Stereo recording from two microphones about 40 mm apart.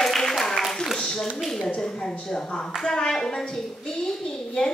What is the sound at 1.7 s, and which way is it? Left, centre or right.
A woman's voice, centre.